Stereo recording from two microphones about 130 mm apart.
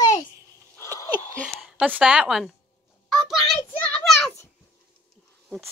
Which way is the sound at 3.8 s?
10° left (ahead or behind).